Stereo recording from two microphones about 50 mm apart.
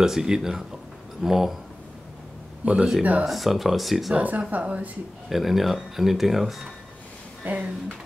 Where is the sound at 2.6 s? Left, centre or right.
Right.